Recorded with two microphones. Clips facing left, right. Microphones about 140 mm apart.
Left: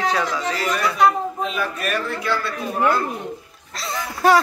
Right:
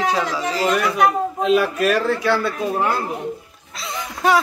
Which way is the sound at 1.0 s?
90° right.